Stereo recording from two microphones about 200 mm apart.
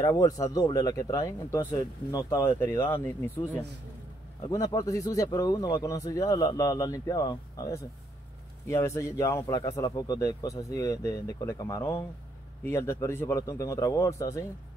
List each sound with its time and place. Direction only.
0.0 s speech: 15° left (ahead or behind)
4.5 s speech: 15° left (ahead or behind)